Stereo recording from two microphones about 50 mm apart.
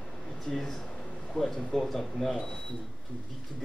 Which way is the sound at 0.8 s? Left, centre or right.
Left.